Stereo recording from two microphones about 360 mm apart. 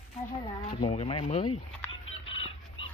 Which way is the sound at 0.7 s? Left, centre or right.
Centre.